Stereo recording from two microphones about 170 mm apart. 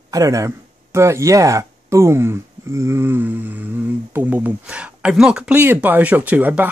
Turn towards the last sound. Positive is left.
turn(degrees=-10)  # may be behind; listen again after turning